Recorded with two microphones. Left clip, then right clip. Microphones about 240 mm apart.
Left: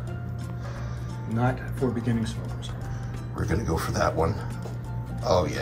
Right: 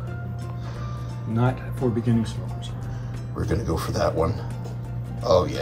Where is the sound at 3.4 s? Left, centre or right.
Centre.